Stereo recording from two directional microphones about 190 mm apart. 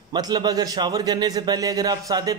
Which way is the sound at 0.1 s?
20° right (ahead or behind).